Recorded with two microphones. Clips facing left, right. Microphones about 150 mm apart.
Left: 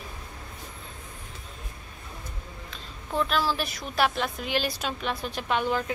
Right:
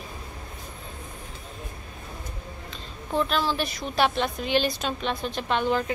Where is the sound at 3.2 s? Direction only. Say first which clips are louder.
Right 1 dB; centre (ahead or behind).